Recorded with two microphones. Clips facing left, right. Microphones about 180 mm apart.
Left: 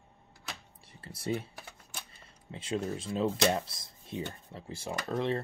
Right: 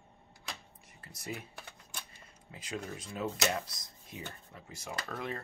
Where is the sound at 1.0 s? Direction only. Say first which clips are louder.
Left 8 dB; 30° left (ahead or behind).